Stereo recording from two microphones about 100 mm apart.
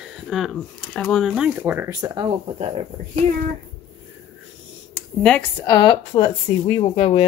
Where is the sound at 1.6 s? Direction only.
20° right (ahead or behind).